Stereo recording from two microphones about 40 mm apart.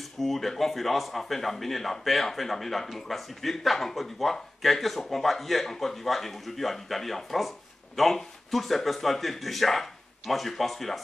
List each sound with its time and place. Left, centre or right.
0.2 s speech: centre